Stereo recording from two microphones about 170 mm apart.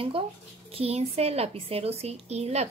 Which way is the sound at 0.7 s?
35° right (ahead or behind).